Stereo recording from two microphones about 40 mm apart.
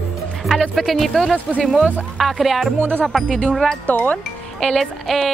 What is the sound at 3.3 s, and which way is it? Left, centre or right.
Speech, centre.